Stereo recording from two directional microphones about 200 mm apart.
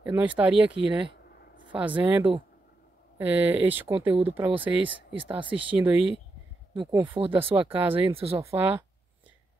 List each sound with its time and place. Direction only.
0.0 s speech: 5° right (ahead or behind)
6.7 s speech: 25° right (ahead or behind)
8.4 s speech: 10° right (ahead or behind)